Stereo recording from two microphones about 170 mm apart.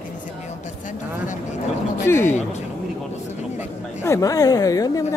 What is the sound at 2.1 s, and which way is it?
Speech, 15° left (ahead or behind).